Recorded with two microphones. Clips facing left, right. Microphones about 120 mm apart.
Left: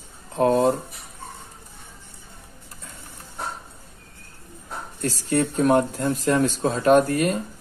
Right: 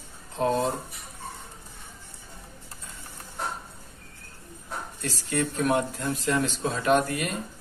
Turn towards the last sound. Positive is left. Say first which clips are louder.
# left 6 dB
turn(degrees=40)  # may be behind; listen again after turning